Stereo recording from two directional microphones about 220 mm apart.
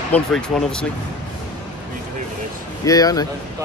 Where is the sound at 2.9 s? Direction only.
15° left (ahead or behind).